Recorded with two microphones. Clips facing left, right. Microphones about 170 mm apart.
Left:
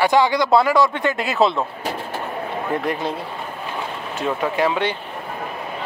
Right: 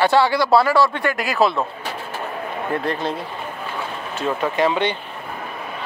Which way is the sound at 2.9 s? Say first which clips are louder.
Even; 10° left (ahead or behind).